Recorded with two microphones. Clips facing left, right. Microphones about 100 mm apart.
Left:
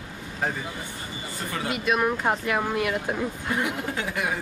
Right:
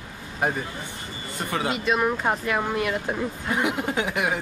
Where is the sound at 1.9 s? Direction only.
Centre (ahead or behind).